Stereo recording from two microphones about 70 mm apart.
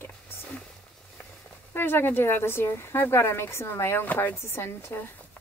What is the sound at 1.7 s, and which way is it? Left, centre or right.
Speech, left.